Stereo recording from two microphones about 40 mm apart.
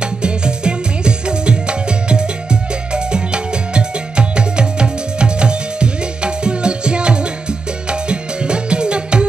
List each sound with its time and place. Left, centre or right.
0.0 s music: right